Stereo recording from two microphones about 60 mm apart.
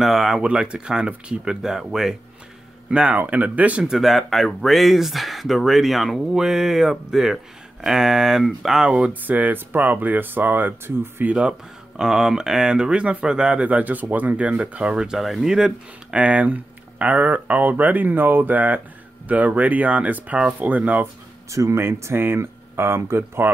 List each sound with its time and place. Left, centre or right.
0.0 s speech: centre
0.4 s speech: centre
2.9 s speech: centre
3.8 s speech: centre
8.8 s speech: centre
9.2 s speech: right
11.2 s speech: centre
21.5 s speech: right